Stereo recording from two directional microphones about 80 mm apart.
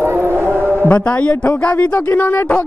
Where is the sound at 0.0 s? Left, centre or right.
Right.